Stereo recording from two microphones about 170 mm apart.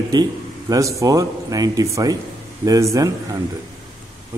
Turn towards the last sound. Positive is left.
turn(degrees=-20)  # may be behind; listen again after turning